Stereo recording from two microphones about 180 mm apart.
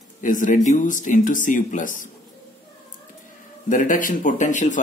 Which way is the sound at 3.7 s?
50° left (ahead or behind).